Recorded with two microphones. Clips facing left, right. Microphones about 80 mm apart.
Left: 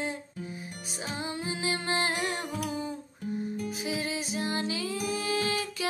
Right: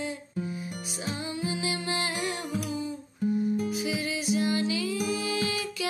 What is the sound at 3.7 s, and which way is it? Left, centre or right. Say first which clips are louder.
Music: right 2 dB; left.